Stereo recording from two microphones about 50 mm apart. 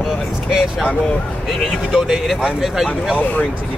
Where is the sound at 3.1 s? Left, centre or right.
Left.